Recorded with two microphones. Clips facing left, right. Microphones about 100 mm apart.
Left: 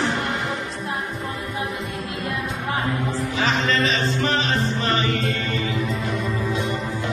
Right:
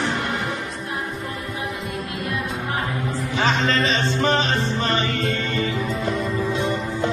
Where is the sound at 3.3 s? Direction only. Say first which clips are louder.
Right 2 dB; 30° right (ahead or behind).